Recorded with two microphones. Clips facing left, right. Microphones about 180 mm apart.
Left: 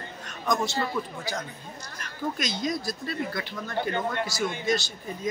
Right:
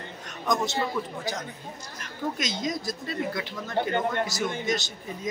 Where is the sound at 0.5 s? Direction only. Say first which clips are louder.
Even; 20° right (ahead or behind).